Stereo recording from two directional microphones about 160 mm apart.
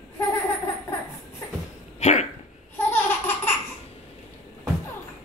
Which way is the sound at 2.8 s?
15° left (ahead or behind).